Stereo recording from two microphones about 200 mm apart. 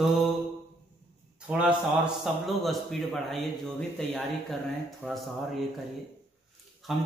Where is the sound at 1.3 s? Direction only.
5° right (ahead or behind).